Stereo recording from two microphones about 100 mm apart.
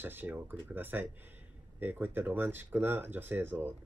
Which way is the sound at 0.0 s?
20° right (ahead or behind).